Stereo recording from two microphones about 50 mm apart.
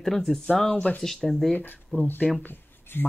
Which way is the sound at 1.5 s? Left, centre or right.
Left.